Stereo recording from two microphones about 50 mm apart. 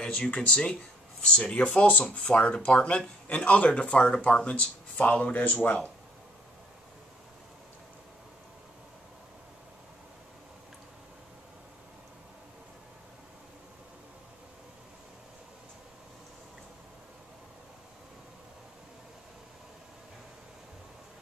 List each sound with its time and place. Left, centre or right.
0.0 s speech: left